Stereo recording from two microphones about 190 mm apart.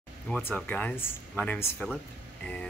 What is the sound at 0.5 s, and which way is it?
Speech, 10° left (ahead or behind).